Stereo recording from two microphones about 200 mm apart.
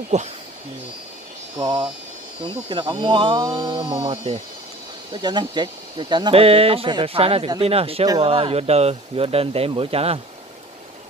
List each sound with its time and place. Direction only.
0.1 s speech: 35° right (ahead or behind)
1.6 s speech: 20° right (ahead or behind)
5.1 s speech: 25° right (ahead or behind)